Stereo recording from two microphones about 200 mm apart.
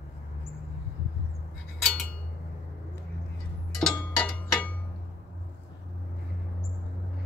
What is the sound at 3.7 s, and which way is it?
Cowbell, 10° left (ahead or behind).